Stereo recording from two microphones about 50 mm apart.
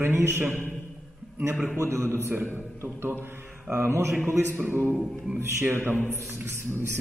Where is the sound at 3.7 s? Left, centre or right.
Right.